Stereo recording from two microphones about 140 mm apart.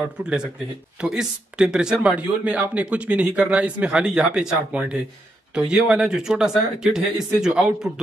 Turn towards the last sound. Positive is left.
turn(degrees=-5)  # may be behind; listen again after turning